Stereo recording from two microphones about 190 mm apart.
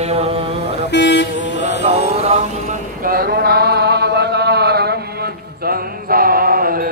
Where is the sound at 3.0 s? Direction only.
50° right (ahead or behind).